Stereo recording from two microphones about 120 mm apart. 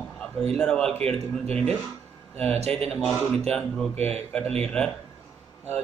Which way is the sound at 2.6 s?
55° right (ahead or behind).